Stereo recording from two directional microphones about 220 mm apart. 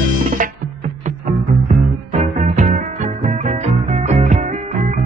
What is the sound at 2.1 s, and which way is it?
Music, 30° right (ahead or behind).